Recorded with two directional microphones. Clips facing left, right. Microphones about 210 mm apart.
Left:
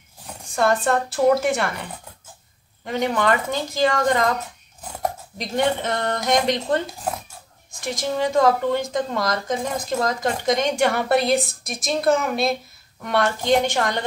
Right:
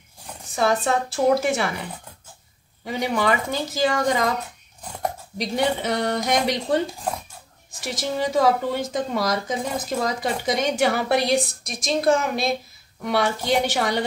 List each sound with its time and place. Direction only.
0.6 s a woman's voice: centre (ahead or behind)
2.8 s a woman's voice: 5° right (ahead or behind)
5.8 s a woman's voice: 5° right (ahead or behind)